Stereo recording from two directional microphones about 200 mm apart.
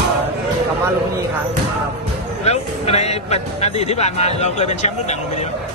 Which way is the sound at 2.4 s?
30° left (ahead or behind).